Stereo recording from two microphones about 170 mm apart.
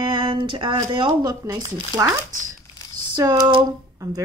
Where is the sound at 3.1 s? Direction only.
25° right (ahead or behind).